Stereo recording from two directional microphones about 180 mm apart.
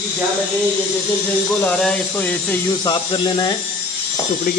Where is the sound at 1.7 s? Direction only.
5° left (ahead or behind).